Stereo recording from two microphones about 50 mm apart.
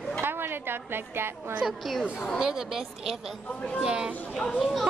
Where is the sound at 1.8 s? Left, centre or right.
Centre.